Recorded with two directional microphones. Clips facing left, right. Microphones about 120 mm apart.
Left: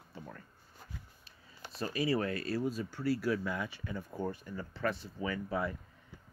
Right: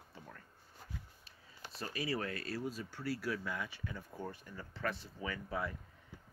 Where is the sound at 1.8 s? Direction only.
20° left (ahead or behind).